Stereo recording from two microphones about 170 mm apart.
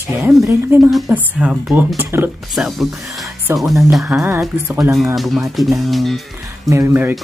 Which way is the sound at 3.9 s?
Centre (ahead or behind).